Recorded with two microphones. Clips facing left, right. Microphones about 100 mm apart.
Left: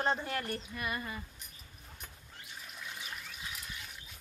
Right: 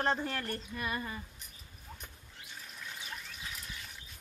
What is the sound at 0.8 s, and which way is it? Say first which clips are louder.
Speech: right 2 dB; 30° right (ahead or behind).